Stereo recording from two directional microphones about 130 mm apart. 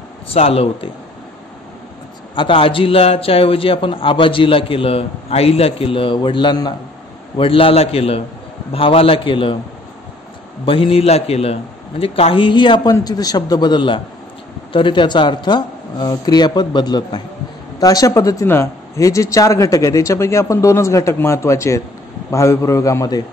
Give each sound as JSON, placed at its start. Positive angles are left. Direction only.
{"t": 0.3, "sound": "speech", "side_deg": 50}
{"t": 2.3, "sound": "speech", "side_deg": 40}
{"t": 7.3, "sound": "speech", "side_deg": 45}
{"t": 10.6, "sound": "speech", "side_deg": 45}